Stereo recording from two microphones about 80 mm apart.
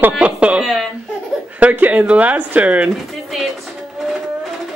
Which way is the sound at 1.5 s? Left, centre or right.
Centre.